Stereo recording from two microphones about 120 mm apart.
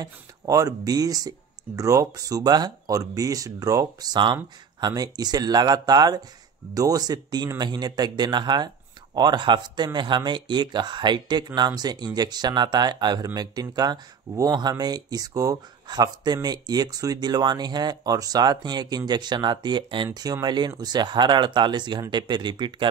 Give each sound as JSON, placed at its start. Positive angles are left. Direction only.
{"t": 0.0, "sound": "speech", "side_deg": -30}